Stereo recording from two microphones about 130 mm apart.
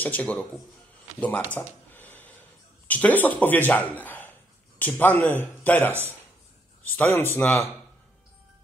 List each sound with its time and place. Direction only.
0.0 s speech: 10° left (ahead or behind)
1.2 s a sound: 10° left (ahead or behind)
2.9 s speech: 10° left (ahead or behind)
7.0 s speech: 15° left (ahead or behind)